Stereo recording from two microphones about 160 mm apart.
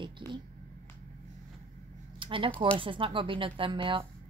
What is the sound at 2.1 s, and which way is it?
Typing, 30° right (ahead or behind).